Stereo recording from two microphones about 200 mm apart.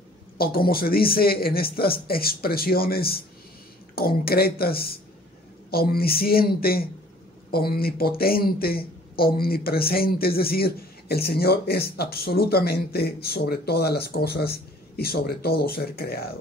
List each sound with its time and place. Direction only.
0.4 s speech: 50° left (ahead or behind)